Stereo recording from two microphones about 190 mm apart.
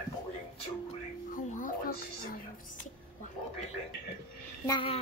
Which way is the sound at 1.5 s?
45° left (ahead or behind).